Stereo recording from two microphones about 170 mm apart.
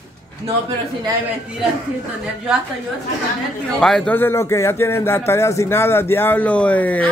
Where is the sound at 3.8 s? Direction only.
5° left (ahead or behind).